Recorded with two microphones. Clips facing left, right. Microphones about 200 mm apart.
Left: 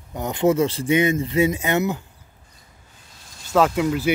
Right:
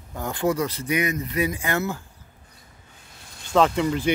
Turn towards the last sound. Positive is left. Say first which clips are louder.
# left 1 dB
turn(degrees=5)  # may be behind; listen again after turning